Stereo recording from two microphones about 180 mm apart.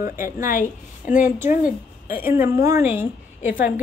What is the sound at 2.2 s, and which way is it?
Speech, 15° right (ahead or behind).